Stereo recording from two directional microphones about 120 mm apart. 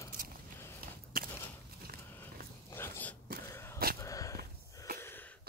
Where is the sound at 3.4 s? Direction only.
20° left (ahead or behind).